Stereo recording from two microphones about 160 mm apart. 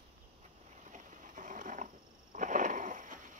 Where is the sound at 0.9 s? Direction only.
55° right (ahead or behind).